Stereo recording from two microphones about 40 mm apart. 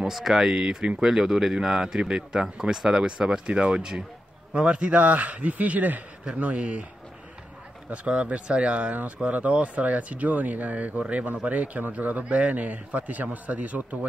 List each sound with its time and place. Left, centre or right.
0.0 s speech: centre
0.7 s speech: right
0.9 s speech: centre; by 6.0 s right
6.2 s speech: right
7.9 s speech: right